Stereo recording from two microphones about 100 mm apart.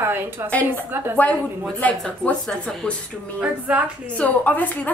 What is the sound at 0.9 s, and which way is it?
Speech, 20° right (ahead or behind).